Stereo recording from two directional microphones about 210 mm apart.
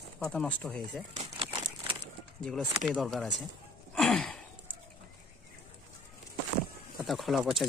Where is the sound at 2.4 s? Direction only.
Centre (ahead or behind).